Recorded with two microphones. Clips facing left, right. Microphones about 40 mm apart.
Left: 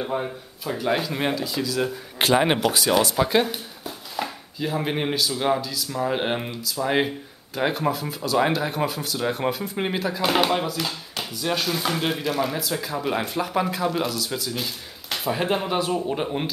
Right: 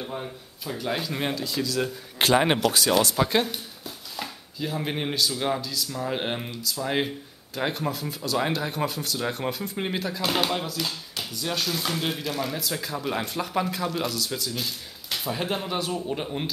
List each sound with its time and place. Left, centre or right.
0.0 s speech: left
0.8 s speech: centre